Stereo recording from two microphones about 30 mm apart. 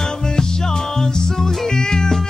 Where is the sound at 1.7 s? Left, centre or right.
Left.